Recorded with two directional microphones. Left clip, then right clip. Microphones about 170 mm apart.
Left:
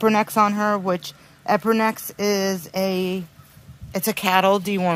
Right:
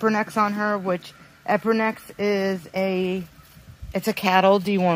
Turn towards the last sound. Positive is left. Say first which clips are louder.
# right 1 dB
turn(degrees=-10)  # may be behind; listen again after turning